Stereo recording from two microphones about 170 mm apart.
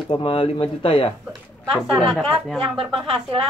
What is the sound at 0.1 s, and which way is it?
Speech, 30° left (ahead or behind).